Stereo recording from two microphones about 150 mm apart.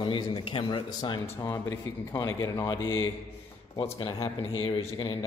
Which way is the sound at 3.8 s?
35° left (ahead or behind).